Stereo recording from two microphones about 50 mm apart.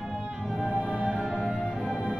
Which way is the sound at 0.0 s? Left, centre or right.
Centre.